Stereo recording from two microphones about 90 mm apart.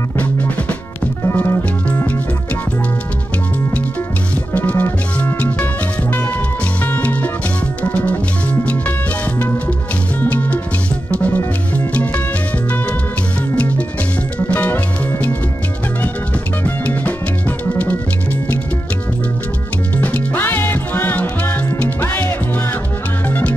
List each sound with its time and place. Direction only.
0.2 s music: 15° left (ahead or behind)
1.3 s music: 25° left (ahead or behind)
4.6 s music: 15° left (ahead or behind)
6.9 s music: 15° left (ahead or behind)
10.2 s music: 15° left (ahead or behind)
14.5 s music: 15° left (ahead or behind)
16.6 s music: 15° left (ahead or behind)
20.0 s music: 20° left (ahead or behind)